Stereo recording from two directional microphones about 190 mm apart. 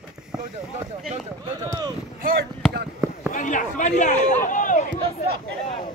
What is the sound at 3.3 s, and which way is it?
Speech, 40° left (ahead or behind).